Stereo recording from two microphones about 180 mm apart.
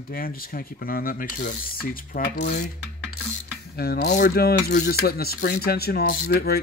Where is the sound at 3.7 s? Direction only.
60° left (ahead or behind).